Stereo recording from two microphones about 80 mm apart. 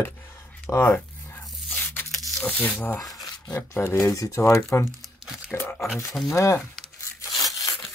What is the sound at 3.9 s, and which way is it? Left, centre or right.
Speech, left.